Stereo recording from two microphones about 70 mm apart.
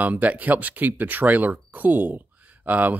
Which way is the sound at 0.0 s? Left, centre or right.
Right.